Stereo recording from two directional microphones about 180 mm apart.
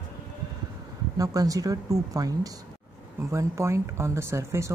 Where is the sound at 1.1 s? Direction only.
20° right (ahead or behind).